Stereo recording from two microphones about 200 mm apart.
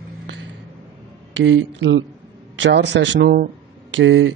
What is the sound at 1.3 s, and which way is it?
A man's voice, 70° right (ahead or behind).